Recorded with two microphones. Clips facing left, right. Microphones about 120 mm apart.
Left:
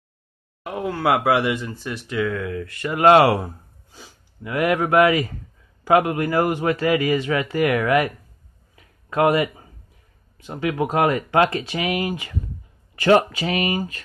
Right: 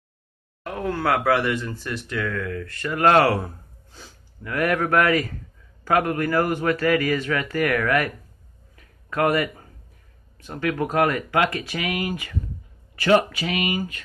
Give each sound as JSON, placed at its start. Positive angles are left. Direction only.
{"t": 0.7, "sound": "speech", "side_deg": 10}
{"t": 4.4, "sound": "a man's voice", "side_deg": 15}
{"t": 8.7, "sound": "a sound", "side_deg": 20}
{"t": 10.3, "sound": "a man's voice", "side_deg": 15}